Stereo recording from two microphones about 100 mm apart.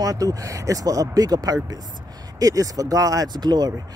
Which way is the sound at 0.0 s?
35° right (ahead or behind).